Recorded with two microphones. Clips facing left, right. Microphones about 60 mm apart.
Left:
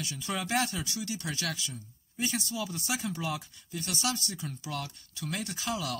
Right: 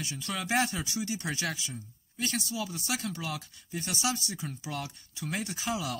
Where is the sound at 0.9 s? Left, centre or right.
Centre.